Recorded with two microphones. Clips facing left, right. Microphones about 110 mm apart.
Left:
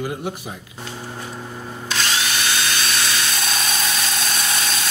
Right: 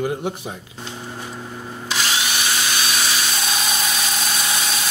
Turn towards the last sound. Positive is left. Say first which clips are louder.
# even
turn(degrees=-5)  # may be behind; listen again after turning